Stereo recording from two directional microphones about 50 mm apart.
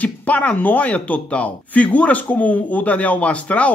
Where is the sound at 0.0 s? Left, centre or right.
Left.